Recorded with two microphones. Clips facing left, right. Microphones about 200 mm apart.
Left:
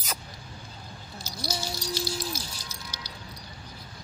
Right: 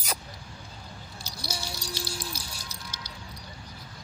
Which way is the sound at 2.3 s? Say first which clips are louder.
Left 3 dB; 30° right (ahead or behind).